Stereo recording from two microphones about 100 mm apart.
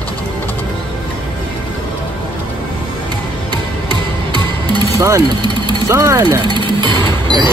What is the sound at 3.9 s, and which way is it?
Music, 45° right (ahead or behind).